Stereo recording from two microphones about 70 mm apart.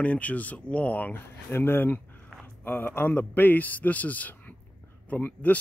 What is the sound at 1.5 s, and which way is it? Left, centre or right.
Speech, left.